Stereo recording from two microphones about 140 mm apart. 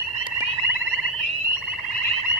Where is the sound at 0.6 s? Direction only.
15° right (ahead or behind).